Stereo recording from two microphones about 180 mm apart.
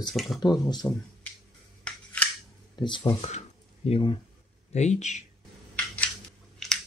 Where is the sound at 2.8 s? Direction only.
25° left (ahead or behind).